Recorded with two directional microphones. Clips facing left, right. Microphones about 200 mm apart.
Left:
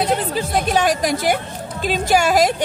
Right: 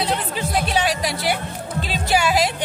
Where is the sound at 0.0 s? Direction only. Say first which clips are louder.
Left 4 dB; 45° left (ahead or behind).